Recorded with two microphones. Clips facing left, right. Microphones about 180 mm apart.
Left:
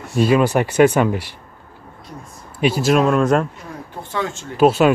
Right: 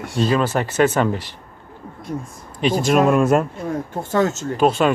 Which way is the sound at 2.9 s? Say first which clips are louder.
Right 1 dB; 5° right (ahead or behind).